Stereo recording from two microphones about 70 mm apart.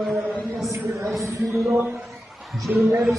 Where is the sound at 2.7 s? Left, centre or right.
Right.